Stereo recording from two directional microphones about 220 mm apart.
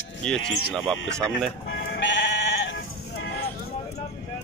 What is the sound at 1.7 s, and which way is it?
Sheep, 55° left (ahead or behind).